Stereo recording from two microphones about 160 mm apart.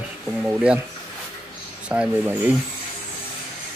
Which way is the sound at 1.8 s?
10° right (ahead or behind).